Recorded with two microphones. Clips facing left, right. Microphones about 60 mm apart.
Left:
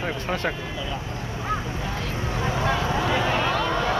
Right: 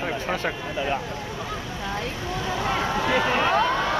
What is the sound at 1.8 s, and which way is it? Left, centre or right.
Vehicle, right.